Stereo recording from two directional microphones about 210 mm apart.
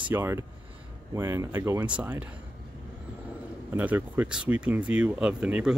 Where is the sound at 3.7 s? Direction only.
10° right (ahead or behind).